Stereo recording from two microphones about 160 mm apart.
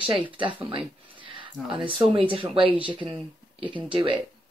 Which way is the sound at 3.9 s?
30° right (ahead or behind).